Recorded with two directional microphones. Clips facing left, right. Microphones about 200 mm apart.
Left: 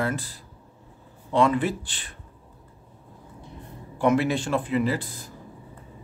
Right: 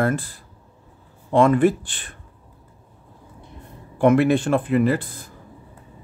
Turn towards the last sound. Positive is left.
turn(degrees=-55)  # may be behind; listen again after turning